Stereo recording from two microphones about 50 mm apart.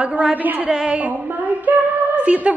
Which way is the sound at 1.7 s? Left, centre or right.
Right.